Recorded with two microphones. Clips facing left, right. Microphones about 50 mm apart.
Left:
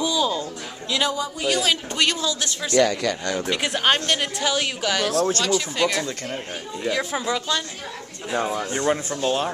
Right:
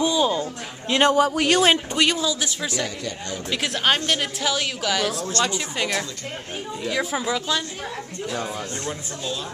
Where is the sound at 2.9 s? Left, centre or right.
Left.